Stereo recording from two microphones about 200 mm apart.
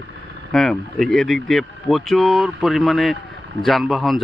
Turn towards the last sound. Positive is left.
turn(degrees=0)  # may be behind; listen again after turning